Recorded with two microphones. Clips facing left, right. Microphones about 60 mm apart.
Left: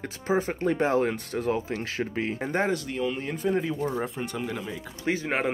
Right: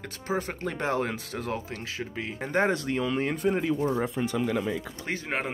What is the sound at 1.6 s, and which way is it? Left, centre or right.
Speech, left.